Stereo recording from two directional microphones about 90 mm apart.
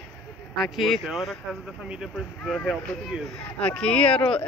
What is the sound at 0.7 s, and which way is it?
Speech, centre (ahead or behind).